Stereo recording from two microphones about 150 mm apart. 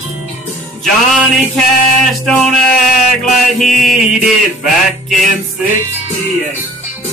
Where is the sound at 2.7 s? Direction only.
60° left (ahead or behind).